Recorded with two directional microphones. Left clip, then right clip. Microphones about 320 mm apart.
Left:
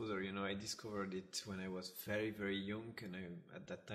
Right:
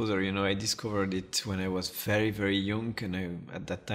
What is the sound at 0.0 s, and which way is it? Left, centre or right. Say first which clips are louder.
Speech: right 13 dB; right.